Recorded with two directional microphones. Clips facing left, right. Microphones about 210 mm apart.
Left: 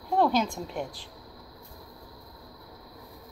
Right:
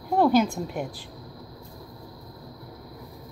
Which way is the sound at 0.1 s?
5° right (ahead or behind).